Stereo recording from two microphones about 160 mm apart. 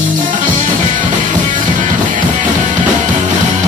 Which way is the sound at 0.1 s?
55° right (ahead or behind).